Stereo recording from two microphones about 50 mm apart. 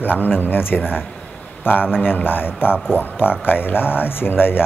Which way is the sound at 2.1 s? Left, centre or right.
Left.